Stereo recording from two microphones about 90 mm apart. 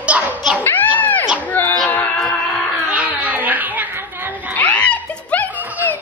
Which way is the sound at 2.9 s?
15° right (ahead or behind).